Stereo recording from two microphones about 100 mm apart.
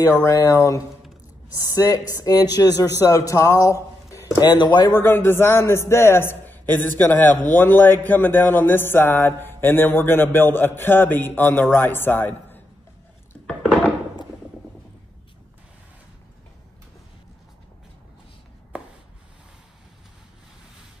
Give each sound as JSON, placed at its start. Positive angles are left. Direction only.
{"t": 0.0, "sound": "speech", "side_deg": 30}
{"t": 4.4, "sound": "speech", "side_deg": 45}
{"t": 4.9, "sound": "a man's voice", "side_deg": 20}
{"t": 13.6, "sound": "a sound", "side_deg": -10}